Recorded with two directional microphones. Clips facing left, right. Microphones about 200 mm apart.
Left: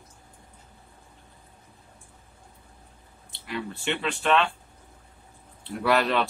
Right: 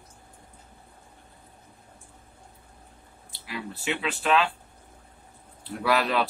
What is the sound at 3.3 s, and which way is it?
Speech, 5° right (ahead or behind).